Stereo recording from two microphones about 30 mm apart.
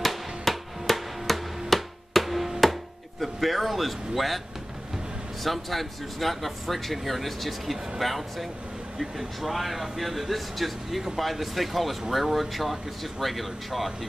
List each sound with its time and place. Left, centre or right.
0.0 s music: centre
1.7 s a sound: centre
2.6 s chopping: centre
5.4 s speech: centre
8.9 s speech: centre
9.4 s speech: centre